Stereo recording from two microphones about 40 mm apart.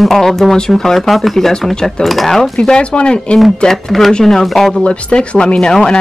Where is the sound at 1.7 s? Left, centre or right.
Centre.